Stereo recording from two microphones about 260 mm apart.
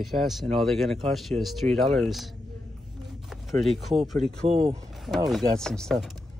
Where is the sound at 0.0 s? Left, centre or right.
Centre.